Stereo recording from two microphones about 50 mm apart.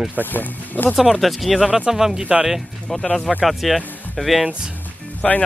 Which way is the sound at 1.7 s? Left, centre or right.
Centre.